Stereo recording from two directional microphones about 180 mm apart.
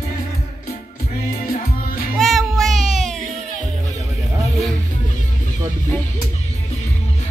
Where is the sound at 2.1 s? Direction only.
Centre (ahead or behind).